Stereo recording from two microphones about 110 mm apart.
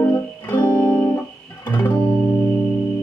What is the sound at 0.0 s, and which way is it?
Music, 20° left (ahead or behind).